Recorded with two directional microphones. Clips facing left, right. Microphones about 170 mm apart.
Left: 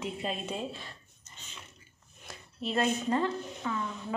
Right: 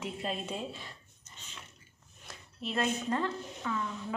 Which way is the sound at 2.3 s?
5° left (ahead or behind).